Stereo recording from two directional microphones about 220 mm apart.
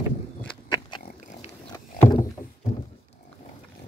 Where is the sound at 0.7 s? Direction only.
20° left (ahead or behind).